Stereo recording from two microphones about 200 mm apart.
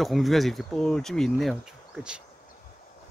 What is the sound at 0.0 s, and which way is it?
Speech, centre (ahead or behind).